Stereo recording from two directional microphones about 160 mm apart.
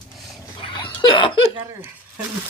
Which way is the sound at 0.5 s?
30° left (ahead or behind).